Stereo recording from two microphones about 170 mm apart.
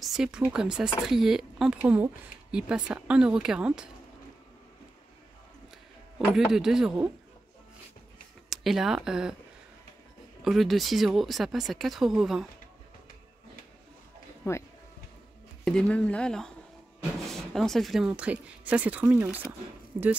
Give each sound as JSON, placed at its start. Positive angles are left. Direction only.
{"t": 0.0, "sound": "speech", "side_deg": -5}
{"t": 6.1, "sound": "speech", "side_deg": -5}
{"t": 8.5, "sound": "speech", "side_deg": 0}
{"t": 10.4, "sound": "speech", "side_deg": 0}
{"t": 14.4, "sound": "speech", "side_deg": 15}
{"t": 15.6, "sound": "speech", "side_deg": 5}